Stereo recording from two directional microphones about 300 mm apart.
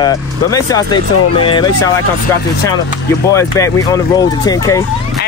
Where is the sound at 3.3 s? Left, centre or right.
Centre.